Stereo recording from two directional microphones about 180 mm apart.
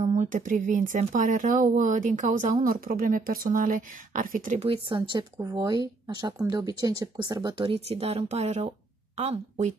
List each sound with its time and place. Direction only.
0.0 s speech: 40° right (ahead or behind)